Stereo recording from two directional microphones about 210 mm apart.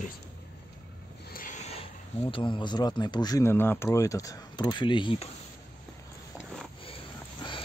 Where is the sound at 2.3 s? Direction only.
25° left (ahead or behind).